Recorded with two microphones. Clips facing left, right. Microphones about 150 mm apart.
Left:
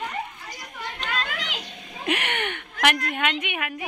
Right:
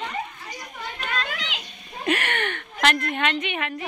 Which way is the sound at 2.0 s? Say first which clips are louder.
Right 2 dB; 15° left (ahead or behind).